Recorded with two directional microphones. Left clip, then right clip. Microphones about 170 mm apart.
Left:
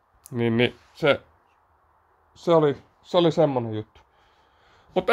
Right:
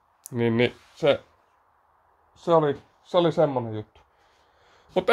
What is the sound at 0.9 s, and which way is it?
Speech, 15° left (ahead or behind).